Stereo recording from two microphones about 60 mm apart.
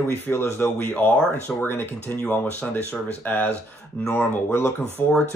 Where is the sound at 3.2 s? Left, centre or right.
Left.